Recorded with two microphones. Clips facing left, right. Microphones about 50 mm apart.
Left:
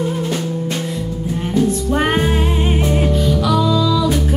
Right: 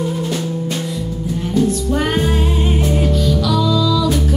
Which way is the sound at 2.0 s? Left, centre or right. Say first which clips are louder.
Left 2 dB; left.